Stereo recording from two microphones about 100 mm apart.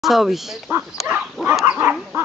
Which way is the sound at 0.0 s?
Centre (ahead or behind).